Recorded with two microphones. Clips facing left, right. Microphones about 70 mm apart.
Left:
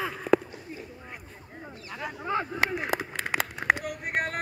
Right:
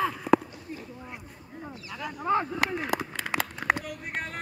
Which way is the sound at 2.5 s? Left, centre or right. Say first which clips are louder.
Even; left.